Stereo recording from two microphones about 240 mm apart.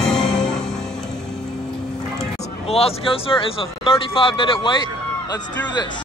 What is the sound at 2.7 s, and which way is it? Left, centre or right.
Speech, left.